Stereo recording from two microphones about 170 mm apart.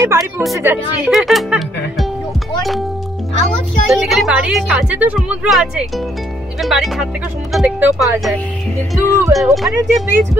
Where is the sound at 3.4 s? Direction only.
Centre (ahead or behind).